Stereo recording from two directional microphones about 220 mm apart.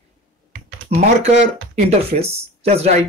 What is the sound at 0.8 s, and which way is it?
Speech, 30° right (ahead or behind).